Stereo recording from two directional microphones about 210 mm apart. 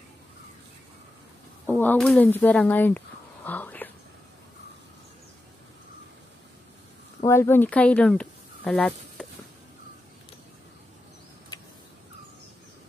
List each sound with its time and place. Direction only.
1.7 s speech: 10° left (ahead or behind)
3.4 s whispering: 10° left (ahead or behind)
7.2 s speech: 10° left (ahead or behind)